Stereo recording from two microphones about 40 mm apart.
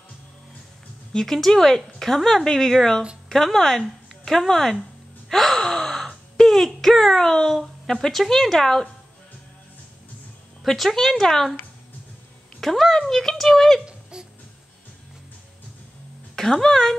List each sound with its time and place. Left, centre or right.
1.1 s speech: centre
5.3 s gasp: centre
7.8 s speech: centre
10.6 s speech: centre
12.5 s speech: centre
14.1 s music: centre
16.3 s a woman's voice: centre